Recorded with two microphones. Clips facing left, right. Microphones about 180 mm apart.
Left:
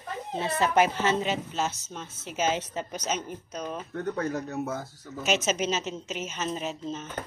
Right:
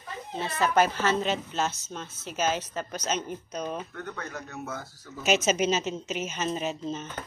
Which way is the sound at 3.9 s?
35° left (ahead or behind).